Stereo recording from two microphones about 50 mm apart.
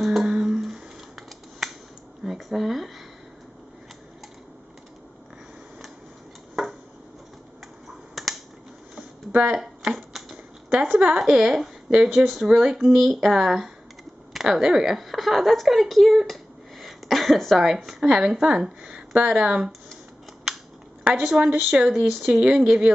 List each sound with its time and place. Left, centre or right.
0.0 s a sound: centre
8.1 s finger snapping: centre
9.3 s speech: right
9.9 s typewriter: centre
10.8 s a woman's voice: centre
18.0 s speech: centre
21.1 s a woman's voice: centre